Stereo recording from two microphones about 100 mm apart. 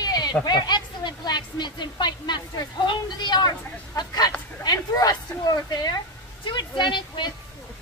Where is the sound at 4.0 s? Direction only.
40° left (ahead or behind).